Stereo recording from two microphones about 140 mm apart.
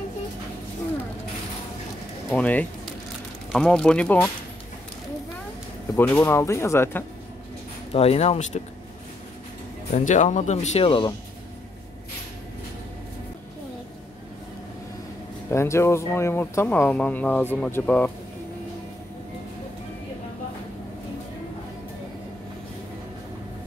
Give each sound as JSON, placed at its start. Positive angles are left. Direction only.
{"t": 2.3, "sound": "speech", "side_deg": 10}
{"t": 5.9, "sound": "speech", "side_deg": 15}
{"t": 7.9, "sound": "speech", "side_deg": 45}
{"t": 9.9, "sound": "speech", "side_deg": 60}
{"t": 15.5, "sound": "speech", "side_deg": 20}